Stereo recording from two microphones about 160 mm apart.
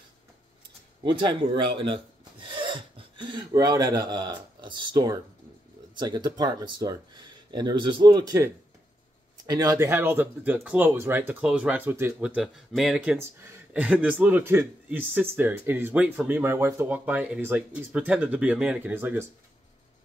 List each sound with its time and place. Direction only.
1.2 s speech: 30° right (ahead or behind)
2.4 s filing: 30° right (ahead or behind)
5.9 s speech: 25° right (ahead or behind)
9.5 s speech: 20° right (ahead or behind); by 13.2 s 5° right (ahead or behind)
13.2 s speech: 15° right (ahead or behind)